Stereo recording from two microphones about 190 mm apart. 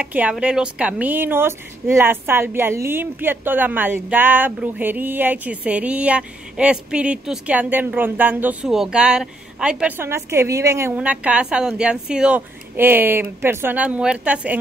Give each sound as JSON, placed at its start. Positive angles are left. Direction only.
{"t": 0.0, "sound": "a woman's voice", "side_deg": -10}